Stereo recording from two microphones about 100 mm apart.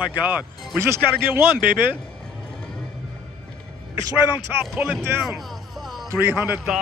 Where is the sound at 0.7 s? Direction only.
25° right (ahead or behind).